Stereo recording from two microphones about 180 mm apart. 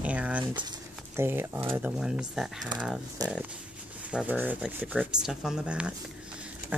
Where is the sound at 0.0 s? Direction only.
5° right (ahead or behind).